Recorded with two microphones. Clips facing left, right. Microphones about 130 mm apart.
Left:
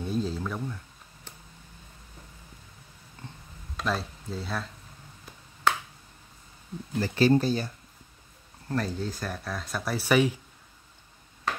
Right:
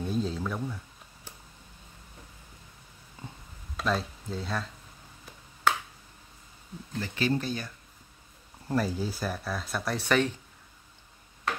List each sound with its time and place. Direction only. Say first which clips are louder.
0.0 s speech: even; centre (ahead or behind)
3.7 s speech: right 1 dB; centre (ahead or behind)
5.2 s finger snapping: left 1 dB; 5° right (ahead or behind)
7.0 s speech: left 7 dB; 35° left (ahead or behind)
8.6 s speech: right 1 dB; 5° right (ahead or behind)